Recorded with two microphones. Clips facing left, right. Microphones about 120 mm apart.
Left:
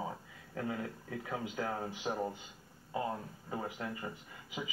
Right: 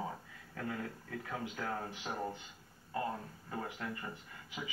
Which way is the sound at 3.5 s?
15° left (ahead or behind).